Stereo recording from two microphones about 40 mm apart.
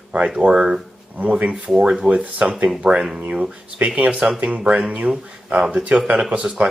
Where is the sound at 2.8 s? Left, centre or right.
Centre.